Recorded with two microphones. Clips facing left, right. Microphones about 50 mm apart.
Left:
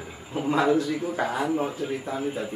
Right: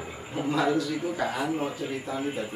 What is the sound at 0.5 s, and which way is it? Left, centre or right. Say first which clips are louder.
Speech: left 3 dB; centre.